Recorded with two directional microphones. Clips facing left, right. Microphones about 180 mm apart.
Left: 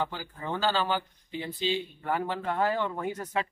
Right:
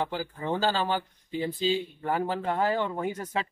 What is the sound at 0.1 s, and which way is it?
Speech, 30° right (ahead or behind).